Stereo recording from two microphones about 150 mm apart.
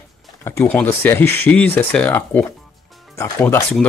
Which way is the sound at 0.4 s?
15° left (ahead or behind).